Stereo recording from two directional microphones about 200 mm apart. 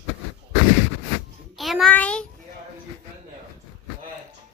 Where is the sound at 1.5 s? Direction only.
Centre (ahead or behind).